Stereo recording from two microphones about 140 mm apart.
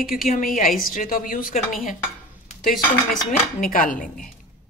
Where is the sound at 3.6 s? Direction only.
80° left.